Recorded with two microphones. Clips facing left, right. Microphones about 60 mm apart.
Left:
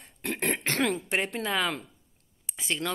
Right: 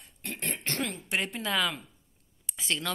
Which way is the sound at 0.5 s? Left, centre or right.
Left.